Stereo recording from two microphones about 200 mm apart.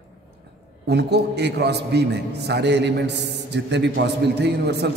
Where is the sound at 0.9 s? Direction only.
55° right (ahead or behind).